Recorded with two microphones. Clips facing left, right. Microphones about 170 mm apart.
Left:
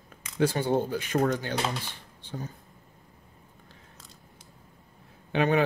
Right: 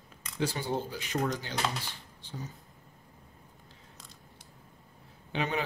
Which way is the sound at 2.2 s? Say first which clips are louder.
Left 5 dB; 55° left (ahead or behind).